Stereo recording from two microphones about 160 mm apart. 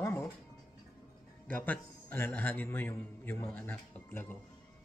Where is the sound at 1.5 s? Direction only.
10° left (ahead or behind).